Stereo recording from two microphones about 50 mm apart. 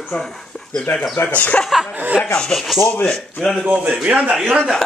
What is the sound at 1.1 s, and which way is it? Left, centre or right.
Speech, left.